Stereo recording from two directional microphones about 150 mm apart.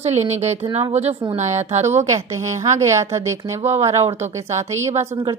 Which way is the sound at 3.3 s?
45° right (ahead or behind).